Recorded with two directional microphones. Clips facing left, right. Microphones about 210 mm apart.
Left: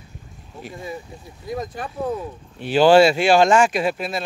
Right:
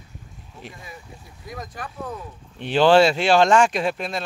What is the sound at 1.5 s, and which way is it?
Speech, 25° left (ahead or behind).